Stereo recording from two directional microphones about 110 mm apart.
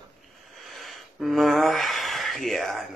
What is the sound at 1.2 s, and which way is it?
Speech, centre (ahead or behind).